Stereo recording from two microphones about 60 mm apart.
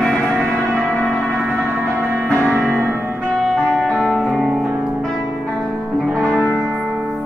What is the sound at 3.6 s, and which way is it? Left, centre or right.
Music, centre.